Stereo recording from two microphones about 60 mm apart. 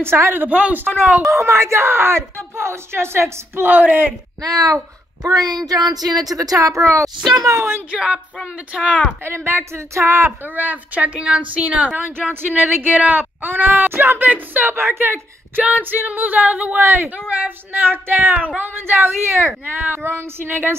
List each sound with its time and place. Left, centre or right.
0.0 s speech: right
1.2 s speech: right
3.7 s speech: right
4.4 s a woman's voice: right
7.9 s a sound: centre
8.7 s speech: centre
9.2 s speech: right
10.4 s speech: right
11.0 s speech: right
15.6 s speech: right